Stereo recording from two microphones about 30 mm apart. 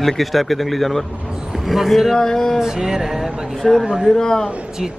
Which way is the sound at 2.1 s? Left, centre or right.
Centre.